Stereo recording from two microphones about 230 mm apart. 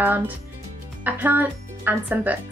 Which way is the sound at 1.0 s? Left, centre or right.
Centre.